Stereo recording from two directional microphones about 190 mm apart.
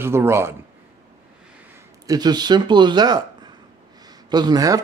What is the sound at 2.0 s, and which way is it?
A man's voice, 20° right (ahead or behind).